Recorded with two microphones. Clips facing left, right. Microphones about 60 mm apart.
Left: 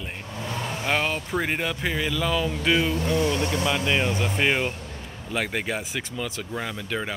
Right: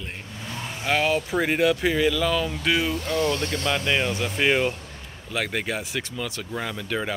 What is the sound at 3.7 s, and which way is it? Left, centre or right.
Speech, centre.